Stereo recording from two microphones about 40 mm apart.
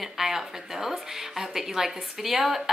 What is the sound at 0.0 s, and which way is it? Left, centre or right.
A woman's voice, centre.